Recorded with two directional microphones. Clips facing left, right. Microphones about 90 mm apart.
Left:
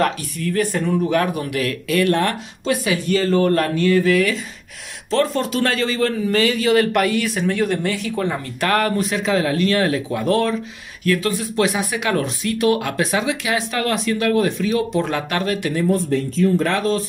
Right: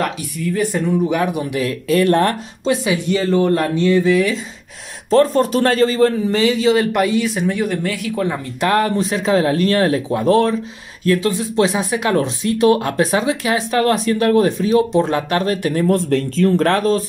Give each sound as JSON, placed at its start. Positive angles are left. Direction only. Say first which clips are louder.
{"t": 0.0, "sound": "speech", "louder": "left 1 dB", "side_deg": -15}
{"t": 2.6, "sound": "speech", "louder": "right 2 dB", "side_deg": -25}
{"t": 5.1, "sound": "speech", "louder": "right 6 dB", "side_deg": -40}
{"t": 6.3, "sound": "speech", "louder": "right 2 dB", "side_deg": -20}
{"t": 7.7, "sound": "speech", "louder": "right 1 dB", "side_deg": -5}
{"t": 8.5, "sound": "speech", "louder": "right 3 dB", "side_deg": -20}
{"t": 15.9, "sound": "speech", "louder": "right 3 dB", "side_deg": -75}
{"t": 16.7, "sound": "speech", "louder": "right 4 dB", "side_deg": -40}